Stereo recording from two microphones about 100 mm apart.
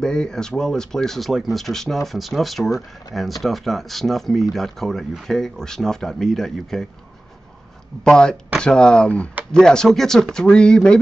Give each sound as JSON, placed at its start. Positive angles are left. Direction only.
{"t": 0.0, "sound": "speech", "side_deg": 5}
{"t": 8.0, "sound": "speech", "side_deg": 5}